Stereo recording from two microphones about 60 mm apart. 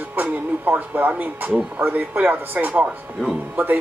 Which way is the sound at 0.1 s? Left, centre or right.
Right.